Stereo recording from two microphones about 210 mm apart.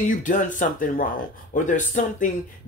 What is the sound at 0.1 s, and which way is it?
Speech, 40° left (ahead or behind).